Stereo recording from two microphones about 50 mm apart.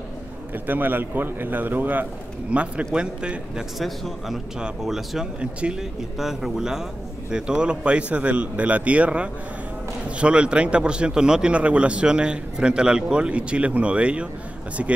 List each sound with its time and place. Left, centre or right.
0.7 s speech: right
2.5 s speech: right
3.8 s a man's voice: centre
4.6 s speech: centre
5.4 s speech: right
5.8 s speech: centre; by 14.2 s right